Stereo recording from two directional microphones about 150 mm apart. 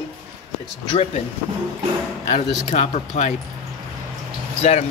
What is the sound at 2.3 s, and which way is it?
Speech, 50° left (ahead or behind).